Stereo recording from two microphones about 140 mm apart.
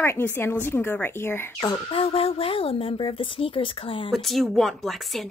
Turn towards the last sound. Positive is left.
turn(degrees=0)  # may be behind; listen again after turning